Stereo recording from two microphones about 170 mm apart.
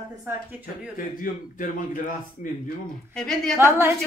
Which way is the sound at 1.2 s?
50° left (ahead or behind).